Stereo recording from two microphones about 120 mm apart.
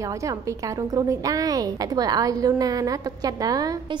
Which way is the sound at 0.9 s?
30° right (ahead or behind).